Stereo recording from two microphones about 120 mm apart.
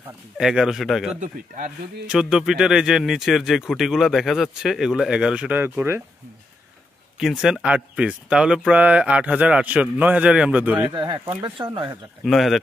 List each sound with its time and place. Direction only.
0.4 s speech: 5° right (ahead or behind)
7.2 s speech: 5° right (ahead or behind)
10.9 s speech: 40° right (ahead or behind)
12.3 s speech: centre (ahead or behind)